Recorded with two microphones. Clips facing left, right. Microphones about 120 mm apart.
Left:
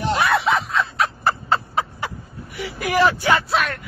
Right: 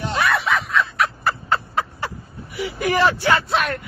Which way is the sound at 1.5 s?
20° left (ahead or behind).